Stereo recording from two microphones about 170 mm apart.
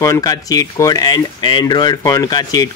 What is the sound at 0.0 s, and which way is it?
Speech, 20° left (ahead or behind).